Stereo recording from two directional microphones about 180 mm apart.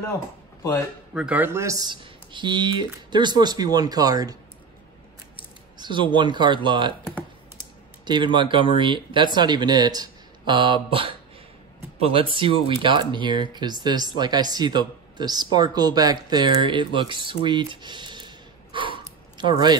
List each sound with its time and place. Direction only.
1.1 s speech: 5° right (ahead or behind)
5.8 s speech: 25° right (ahead or behind)
8.0 s speech: 25° right (ahead or behind)
17.5 s a sound: 25° right (ahead or behind)